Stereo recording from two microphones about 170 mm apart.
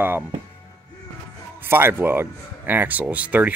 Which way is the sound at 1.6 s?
15° right (ahead or behind).